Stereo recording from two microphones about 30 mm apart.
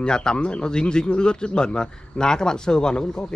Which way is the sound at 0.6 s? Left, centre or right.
Left.